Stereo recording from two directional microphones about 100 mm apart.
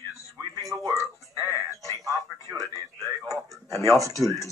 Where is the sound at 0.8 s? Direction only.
35° right (ahead or behind).